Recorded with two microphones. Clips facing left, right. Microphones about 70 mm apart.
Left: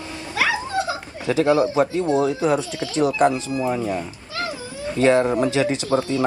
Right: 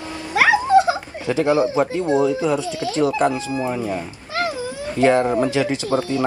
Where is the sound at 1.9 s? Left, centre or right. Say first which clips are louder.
Right 1 dB; right.